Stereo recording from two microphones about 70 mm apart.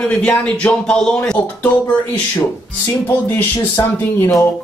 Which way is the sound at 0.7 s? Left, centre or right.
Centre.